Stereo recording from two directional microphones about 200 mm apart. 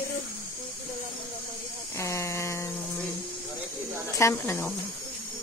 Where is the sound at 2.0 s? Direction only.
15° left (ahead or behind).